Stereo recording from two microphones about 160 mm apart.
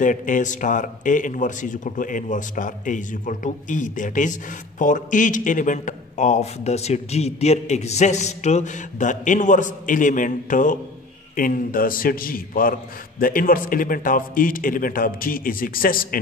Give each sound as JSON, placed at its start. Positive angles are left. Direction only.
{"t": 0.0, "sound": "a man's voice", "side_deg": 55}